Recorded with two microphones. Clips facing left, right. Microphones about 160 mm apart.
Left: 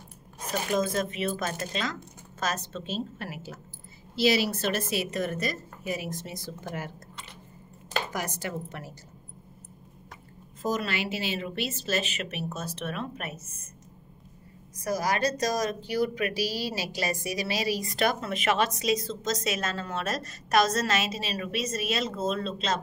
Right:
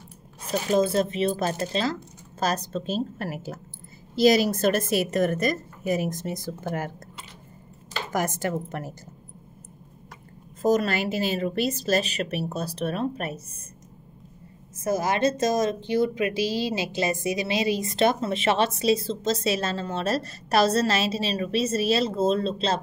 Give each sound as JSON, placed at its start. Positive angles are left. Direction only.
{"t": 0.5, "sound": "a woman's voice", "side_deg": -30}
{"t": 8.1, "sound": "a woman's voice", "side_deg": -45}
{"t": 10.6, "sound": "a woman's voice", "side_deg": -45}
{"t": 14.8, "sound": "speech", "side_deg": -25}